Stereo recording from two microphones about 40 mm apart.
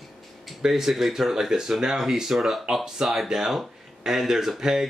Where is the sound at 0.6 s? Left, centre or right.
Centre.